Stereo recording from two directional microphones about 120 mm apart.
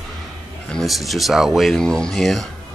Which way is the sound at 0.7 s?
Centre (ahead or behind).